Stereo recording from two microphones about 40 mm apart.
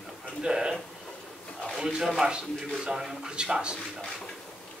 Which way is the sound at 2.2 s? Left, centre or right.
Centre.